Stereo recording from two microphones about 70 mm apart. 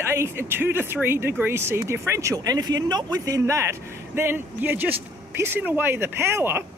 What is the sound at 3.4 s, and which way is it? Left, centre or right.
Speech, right.